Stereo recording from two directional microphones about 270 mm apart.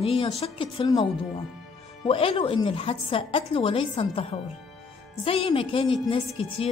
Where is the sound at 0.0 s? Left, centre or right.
Left.